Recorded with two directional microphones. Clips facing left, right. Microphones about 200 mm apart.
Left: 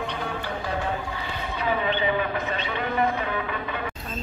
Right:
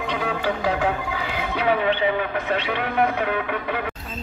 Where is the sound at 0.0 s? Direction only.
90° right; by 3.8 s 65° right (ahead or behind).